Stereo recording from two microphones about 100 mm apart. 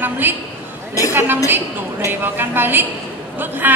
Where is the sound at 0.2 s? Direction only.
20° right (ahead or behind).